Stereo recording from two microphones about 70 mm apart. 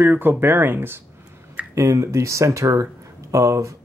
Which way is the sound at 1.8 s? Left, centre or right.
Right.